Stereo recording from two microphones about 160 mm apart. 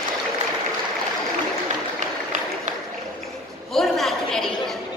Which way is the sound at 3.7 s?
Centre (ahead or behind).